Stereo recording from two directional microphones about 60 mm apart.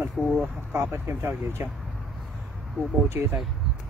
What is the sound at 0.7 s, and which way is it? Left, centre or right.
Speech, right.